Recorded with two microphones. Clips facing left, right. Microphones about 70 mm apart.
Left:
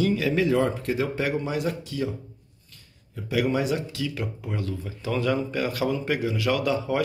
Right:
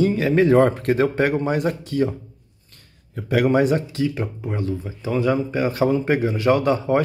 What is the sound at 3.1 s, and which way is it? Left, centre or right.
Speech, right.